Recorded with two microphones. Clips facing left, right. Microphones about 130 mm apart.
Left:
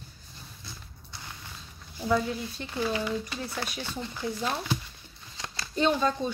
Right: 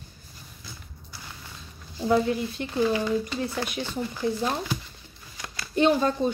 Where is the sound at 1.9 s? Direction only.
20° right (ahead or behind).